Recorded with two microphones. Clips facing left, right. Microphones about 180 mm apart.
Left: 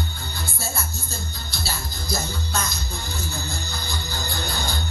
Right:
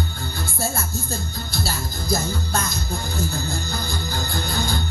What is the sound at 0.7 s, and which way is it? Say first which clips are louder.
Music: right 5 dB; 50° right (ahead or behind).